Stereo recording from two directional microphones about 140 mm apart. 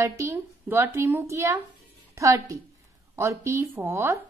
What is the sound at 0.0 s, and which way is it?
Speech, 20° right (ahead or behind).